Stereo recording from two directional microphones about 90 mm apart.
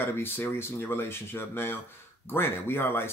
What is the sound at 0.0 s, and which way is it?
Speech, 25° left (ahead or behind).